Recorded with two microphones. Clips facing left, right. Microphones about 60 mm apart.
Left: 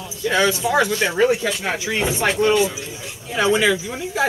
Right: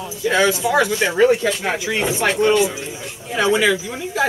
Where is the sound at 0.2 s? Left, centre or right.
Centre.